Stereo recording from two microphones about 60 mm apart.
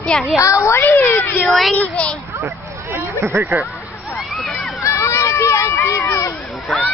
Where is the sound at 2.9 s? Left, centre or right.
Right.